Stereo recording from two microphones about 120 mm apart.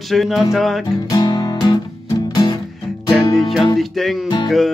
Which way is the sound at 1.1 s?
40° left (ahead or behind).